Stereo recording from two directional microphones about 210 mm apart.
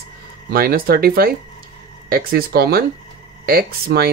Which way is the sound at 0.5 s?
45° right (ahead or behind).